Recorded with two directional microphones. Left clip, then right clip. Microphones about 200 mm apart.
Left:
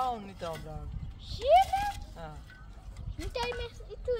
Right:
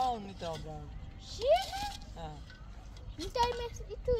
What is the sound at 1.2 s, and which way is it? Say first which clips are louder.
Speech: left 6 dB; 45° right (ahead or behind).